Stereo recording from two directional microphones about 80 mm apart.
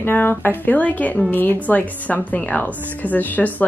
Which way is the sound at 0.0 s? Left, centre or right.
Left.